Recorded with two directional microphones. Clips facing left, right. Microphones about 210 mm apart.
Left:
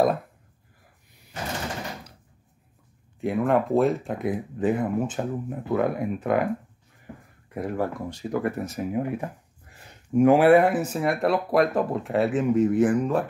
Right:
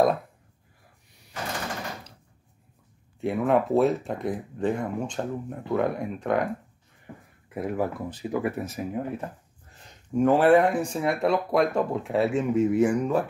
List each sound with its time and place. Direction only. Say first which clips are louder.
3.2 s speech: even; centre (ahead or behind)
7.5 s speech: even; 5° right (ahead or behind)
9.0 s speech: left 3 dB; 10° left (ahead or behind)